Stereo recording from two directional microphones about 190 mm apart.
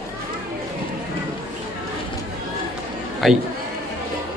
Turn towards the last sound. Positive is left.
turn(degrees=0)  # may be behind; listen again after turning